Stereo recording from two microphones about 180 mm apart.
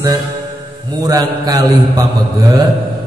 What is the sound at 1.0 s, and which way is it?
A man's voice, 20° right (ahead or behind).